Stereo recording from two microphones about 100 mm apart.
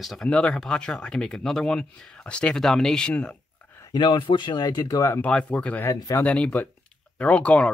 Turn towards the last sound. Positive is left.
turn(degrees=10)  # may be behind; listen again after turning